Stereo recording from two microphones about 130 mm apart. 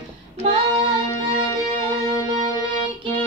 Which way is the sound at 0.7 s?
25° left (ahead or behind).